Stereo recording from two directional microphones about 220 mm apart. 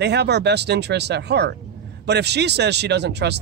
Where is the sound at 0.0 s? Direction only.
50° right (ahead or behind).